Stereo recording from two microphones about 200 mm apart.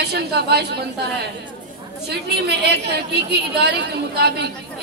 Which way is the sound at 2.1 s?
55° right (ahead or behind).